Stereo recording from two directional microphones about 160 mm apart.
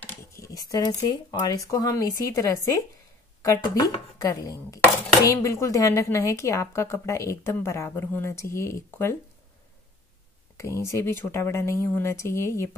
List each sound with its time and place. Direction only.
0.3 s speech: 20° left (ahead or behind)
10.9 s speech: 15° left (ahead or behind)